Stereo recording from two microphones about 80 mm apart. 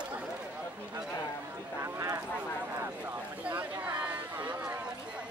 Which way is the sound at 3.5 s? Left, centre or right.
Right.